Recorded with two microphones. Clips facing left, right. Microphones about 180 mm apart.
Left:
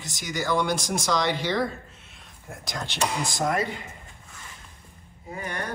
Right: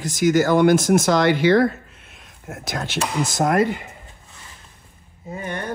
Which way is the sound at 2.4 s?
70° right (ahead or behind).